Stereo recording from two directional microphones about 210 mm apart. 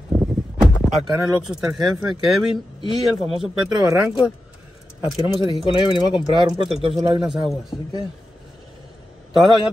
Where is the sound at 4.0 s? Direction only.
5° right (ahead or behind).